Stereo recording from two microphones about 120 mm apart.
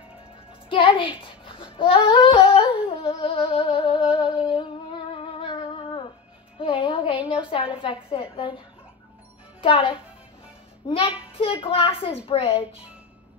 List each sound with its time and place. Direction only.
0.7 s a child's voice: 45° left (ahead or behind)
1.8 s humming: 45° left (ahead or behind)
6.6 s a woman's voice: 45° left (ahead or behind)
9.6 s a child's voice: 45° left (ahead or behind)